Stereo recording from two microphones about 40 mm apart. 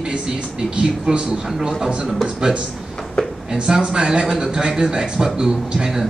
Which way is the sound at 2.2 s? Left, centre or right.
Right.